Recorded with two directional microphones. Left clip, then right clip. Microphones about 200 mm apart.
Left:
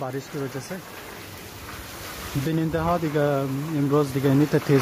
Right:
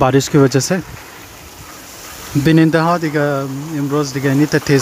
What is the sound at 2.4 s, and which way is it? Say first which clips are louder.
Speech: right 13 dB; 20° right (ahead or behind).